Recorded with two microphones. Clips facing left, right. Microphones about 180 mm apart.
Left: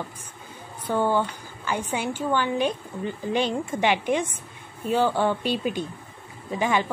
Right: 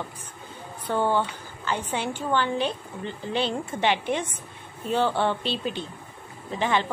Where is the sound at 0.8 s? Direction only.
10° left (ahead or behind).